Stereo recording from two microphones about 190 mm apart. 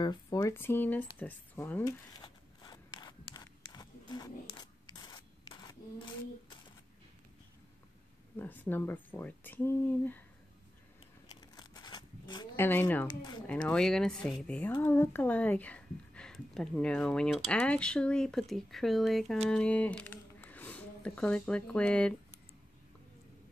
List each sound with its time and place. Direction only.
0.0 s speech: 20° left (ahead or behind)
2.1 s a sound: 20° left (ahead or behind)
8.4 s speech: 10° left (ahead or behind)
11.5 s a sound: 20° left (ahead or behind)
12.5 s speech: 10° left (ahead or behind)
13.0 s speech: 20° left (ahead or behind)
13.7 s speech: 5° left (ahead or behind)